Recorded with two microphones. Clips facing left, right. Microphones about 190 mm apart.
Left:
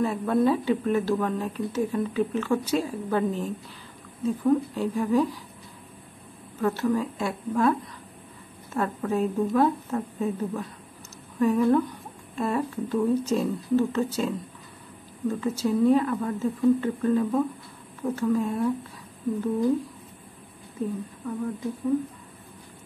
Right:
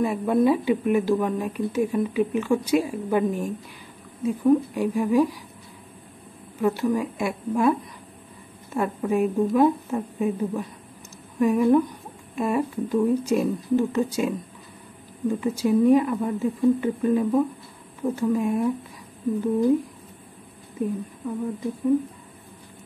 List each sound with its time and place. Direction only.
0.0 s speech: 15° right (ahead or behind)
6.6 s speech: 15° right (ahead or behind)
8.7 s speech: 15° right (ahead or behind)
20.8 s speech: 10° right (ahead or behind)